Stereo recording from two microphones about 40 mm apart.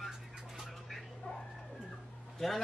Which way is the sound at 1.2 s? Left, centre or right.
Left.